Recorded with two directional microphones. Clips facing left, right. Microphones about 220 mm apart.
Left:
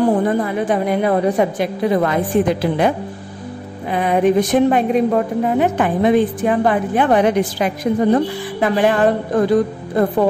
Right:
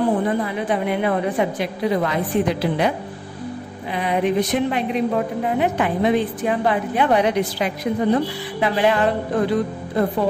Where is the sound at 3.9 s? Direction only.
50° left (ahead or behind).